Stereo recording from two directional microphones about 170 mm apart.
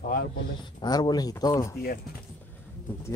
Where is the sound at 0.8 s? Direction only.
25° left (ahead or behind).